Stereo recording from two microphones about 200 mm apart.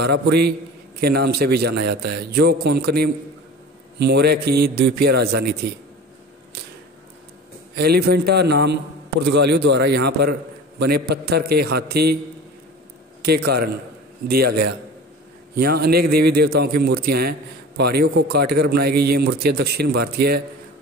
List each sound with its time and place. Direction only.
0.0 s a man's voice: 55° right (ahead or behind)
7.7 s a man's voice: 50° right (ahead or behind)
14.2 s a man's voice: 50° right (ahead or behind)